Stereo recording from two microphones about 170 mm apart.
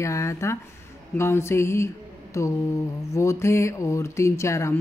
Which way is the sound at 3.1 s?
15° left (ahead or behind).